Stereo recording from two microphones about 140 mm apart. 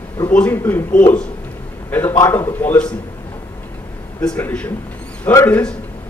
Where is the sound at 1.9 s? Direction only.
15° left (ahead or behind).